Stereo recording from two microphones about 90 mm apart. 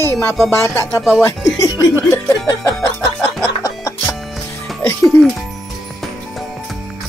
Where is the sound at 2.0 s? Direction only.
30° left (ahead or behind).